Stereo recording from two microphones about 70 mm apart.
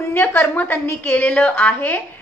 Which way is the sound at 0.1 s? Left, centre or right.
Left.